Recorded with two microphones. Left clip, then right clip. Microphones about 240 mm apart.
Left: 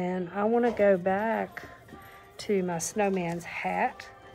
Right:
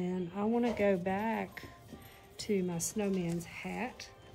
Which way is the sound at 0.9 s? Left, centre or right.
Centre.